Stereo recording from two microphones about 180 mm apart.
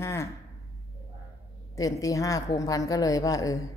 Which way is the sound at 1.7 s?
20° left (ahead or behind).